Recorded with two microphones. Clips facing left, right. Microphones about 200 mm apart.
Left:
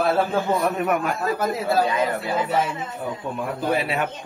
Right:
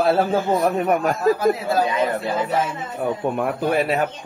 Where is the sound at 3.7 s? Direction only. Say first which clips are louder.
Right 3 dB; 45° right (ahead or behind).